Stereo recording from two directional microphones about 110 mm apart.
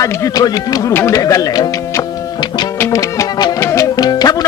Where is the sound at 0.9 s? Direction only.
25° left (ahead or behind).